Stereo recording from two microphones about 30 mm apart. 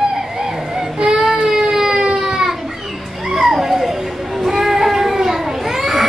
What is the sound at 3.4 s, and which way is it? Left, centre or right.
Children playing, centre.